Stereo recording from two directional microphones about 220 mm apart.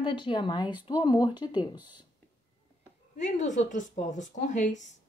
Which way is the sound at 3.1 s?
35° left (ahead or behind).